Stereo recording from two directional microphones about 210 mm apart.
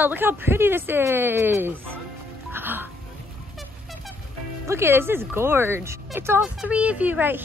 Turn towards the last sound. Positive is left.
turn(degrees=-10)  # may be behind; listen again after turning